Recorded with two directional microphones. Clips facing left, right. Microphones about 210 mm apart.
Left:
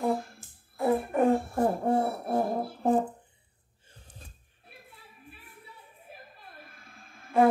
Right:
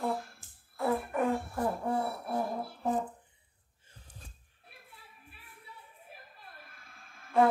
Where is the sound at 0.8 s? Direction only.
25° left (ahead or behind); by 2.9 s 45° left (ahead or behind).